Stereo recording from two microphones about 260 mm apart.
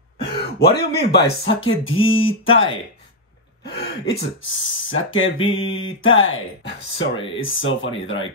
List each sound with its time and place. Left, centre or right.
0.6 s speech: left
2.2 s speech: left
3.7 s speech: left
4.1 s speech: left